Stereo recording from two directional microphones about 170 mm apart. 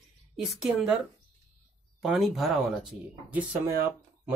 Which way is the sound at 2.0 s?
Centre (ahead or behind).